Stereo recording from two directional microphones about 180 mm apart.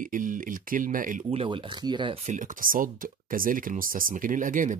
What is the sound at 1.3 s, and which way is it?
Speech, 30° right (ahead or behind).